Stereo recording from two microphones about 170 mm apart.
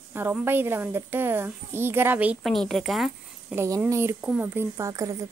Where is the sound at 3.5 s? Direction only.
15° right (ahead or behind).